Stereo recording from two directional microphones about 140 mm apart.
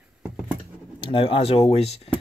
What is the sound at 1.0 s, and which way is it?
Speech, 40° left (ahead or behind).